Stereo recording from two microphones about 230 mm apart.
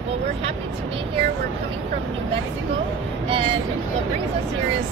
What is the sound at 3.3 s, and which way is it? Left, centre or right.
Speech, right.